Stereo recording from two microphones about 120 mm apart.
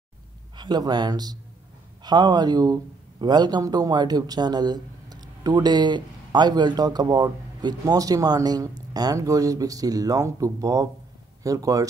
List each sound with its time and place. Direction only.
0.6 s a man's voice: 35° right (ahead or behind)